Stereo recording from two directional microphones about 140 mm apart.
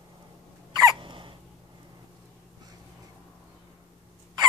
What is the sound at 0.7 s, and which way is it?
Hiccup, 30° right (ahead or behind).